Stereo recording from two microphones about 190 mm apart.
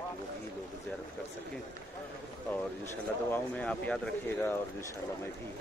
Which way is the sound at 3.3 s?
5° left (ahead or behind).